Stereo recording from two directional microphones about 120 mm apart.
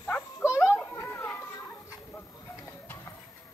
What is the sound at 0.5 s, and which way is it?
Children playing, 20° left (ahead or behind).